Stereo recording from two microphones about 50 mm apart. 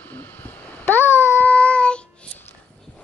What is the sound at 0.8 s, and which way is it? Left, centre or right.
Babbling, left.